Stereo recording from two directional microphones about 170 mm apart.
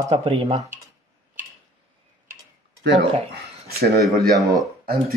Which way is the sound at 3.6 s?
65° right (ahead or behind).